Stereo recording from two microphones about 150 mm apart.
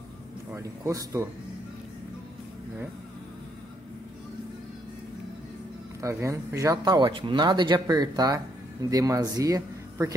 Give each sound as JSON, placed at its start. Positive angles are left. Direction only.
{"t": 0.6, "sound": "speech", "side_deg": -20}
{"t": 5.9, "sound": "speech", "side_deg": -20}